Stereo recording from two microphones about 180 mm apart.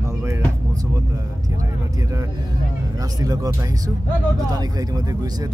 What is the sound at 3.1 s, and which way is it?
Speech, 20° right (ahead or behind).